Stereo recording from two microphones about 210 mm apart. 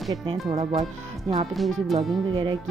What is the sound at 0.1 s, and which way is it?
Speech, 20° right (ahead or behind).